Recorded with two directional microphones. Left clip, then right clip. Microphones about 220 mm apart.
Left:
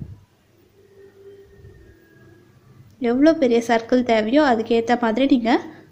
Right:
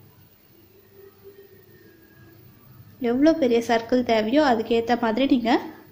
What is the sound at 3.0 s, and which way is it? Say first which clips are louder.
A woman's voice: left 3 dB; 15° left (ahead or behind).